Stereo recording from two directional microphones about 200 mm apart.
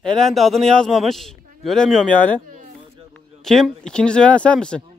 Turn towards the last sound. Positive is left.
turn(degrees=5)  # may be behind; listen again after turning